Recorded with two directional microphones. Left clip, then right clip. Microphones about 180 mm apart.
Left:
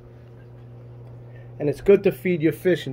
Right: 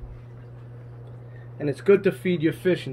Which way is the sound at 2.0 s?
25° left (ahead or behind).